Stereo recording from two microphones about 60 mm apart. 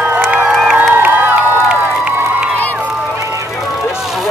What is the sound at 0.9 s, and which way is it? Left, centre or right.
Crowd, right.